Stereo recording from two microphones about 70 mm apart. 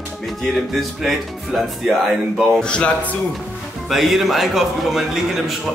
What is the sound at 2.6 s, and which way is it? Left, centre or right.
Speech, centre.